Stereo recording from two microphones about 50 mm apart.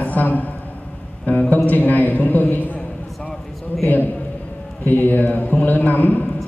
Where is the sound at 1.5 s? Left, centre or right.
Left.